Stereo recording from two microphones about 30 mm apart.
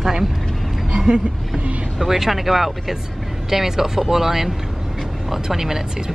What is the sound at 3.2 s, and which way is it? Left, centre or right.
Speech, centre.